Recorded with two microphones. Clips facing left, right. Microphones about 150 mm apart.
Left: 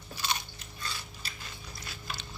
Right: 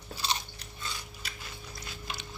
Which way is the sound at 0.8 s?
20° right (ahead or behind).